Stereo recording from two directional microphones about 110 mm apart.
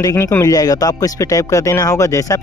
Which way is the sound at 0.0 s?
25° left (ahead or behind).